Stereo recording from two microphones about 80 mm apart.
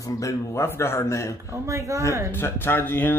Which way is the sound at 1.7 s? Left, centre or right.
Right.